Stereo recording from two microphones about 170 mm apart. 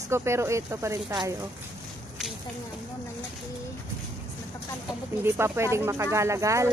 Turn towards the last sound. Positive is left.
turn(degrees=-15)  # may be behind; listen again after turning